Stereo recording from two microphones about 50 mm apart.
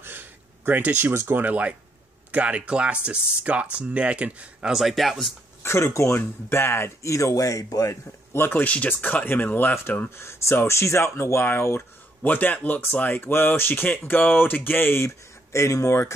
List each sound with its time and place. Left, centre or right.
0.0 s a sound: right
1.1 s speech: right
4.7 s speech: centre
5.6 s speech: left
7.0 s a man's voice: left
8.5 s speech: left
10.0 s speech: left
12.2 s speech: left
13.1 s speech: left
15.0 s speech: left